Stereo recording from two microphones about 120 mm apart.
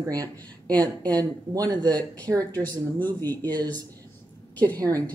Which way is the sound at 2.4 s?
15° left (ahead or behind).